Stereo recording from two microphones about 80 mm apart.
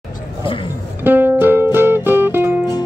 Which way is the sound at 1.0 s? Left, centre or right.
Right.